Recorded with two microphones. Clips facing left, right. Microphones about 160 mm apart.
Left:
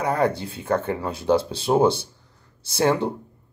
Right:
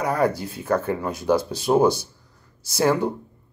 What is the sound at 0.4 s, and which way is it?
Speech, 30° left (ahead or behind).